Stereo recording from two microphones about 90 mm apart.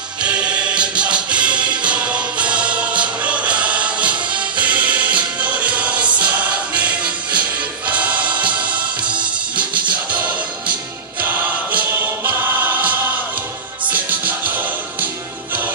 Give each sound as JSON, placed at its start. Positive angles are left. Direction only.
{"t": 0.2, "sound": "music", "side_deg": -10}
{"t": 12.3, "sound": "choir", "side_deg": -20}
{"t": 13.8, "sound": "music", "side_deg": -15}